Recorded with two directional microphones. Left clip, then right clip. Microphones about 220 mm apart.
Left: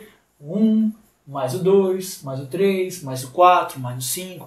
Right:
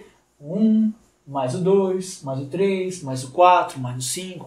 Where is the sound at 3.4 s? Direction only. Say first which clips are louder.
Left 1 dB; 10° right (ahead or behind).